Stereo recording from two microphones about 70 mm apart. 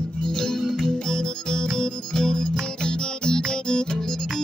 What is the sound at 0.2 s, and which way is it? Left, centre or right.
Music, centre.